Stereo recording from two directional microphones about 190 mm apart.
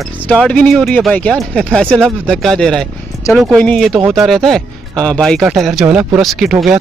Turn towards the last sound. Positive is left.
turn(degrees=0)  # may be behind; listen again after turning